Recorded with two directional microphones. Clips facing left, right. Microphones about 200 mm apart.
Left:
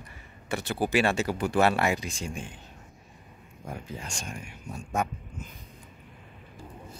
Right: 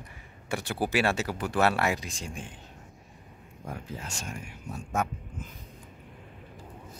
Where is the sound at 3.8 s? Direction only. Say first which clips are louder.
Even; 5° right (ahead or behind).